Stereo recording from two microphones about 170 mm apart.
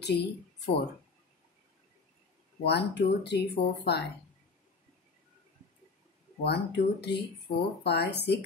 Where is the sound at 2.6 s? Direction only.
80° left.